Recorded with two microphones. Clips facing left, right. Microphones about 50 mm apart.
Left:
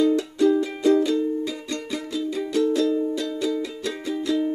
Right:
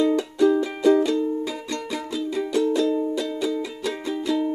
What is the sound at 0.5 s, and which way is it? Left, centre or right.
Music, centre.